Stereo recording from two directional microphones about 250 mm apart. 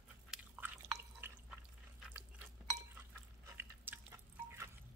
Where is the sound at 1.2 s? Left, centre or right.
Centre.